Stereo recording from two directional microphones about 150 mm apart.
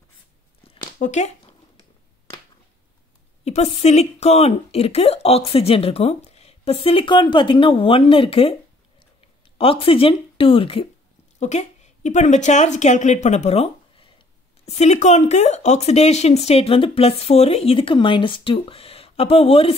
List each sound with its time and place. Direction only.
0.9 s speech: 55° left (ahead or behind)
1.8 s a sound: 25° left (ahead or behind)
3.4 s speech: 45° left (ahead or behind)
9.6 s speech: 40° left (ahead or behind)
11.3 s a woman's voice: 50° left (ahead or behind)
14.7 s speech: 50° left (ahead or behind)